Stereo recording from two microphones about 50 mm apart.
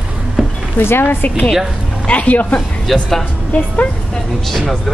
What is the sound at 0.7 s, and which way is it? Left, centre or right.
A woman's voice, left.